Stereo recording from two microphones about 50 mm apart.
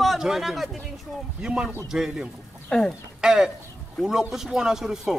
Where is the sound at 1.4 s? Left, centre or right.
Centre.